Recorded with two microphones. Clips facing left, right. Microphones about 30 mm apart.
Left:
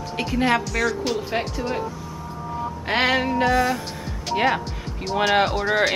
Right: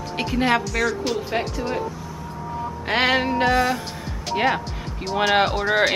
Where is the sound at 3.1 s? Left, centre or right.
Centre.